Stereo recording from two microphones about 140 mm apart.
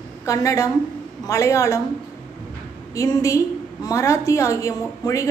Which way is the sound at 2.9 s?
25° left (ahead or behind).